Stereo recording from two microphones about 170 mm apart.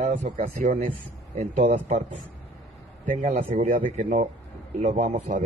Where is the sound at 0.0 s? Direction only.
50° right (ahead or behind).